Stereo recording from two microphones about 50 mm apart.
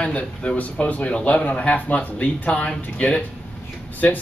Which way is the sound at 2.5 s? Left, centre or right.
Centre.